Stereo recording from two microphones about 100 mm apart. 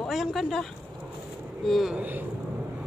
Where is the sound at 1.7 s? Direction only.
Centre (ahead or behind).